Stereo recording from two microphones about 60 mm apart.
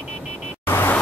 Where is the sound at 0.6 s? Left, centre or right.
Left.